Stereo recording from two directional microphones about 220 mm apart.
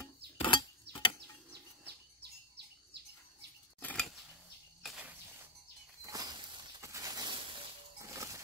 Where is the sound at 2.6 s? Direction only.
50° right (ahead or behind).